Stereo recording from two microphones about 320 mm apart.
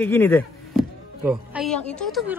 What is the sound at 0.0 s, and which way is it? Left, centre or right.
Music, centre.